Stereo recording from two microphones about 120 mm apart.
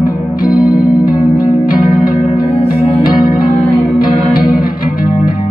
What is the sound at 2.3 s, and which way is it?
Music, 50° left (ahead or behind).